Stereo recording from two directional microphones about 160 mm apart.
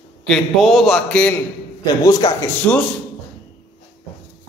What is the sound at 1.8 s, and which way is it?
Speech, 25° left (ahead or behind).